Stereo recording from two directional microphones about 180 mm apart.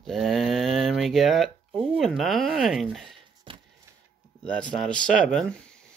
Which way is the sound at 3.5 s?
30° right (ahead or behind).